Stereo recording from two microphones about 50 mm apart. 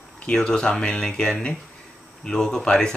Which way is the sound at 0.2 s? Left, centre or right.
Centre.